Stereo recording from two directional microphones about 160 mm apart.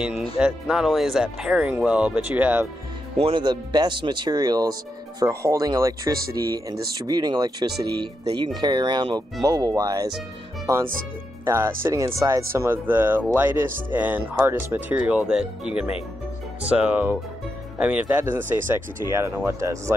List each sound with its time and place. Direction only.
0.1 s speech: 35° left (ahead or behind)
0.4 s speech: 5° right (ahead or behind)
3.2 s speech: 35° right (ahead or behind)
11.4 s speech: 15° right (ahead or behind)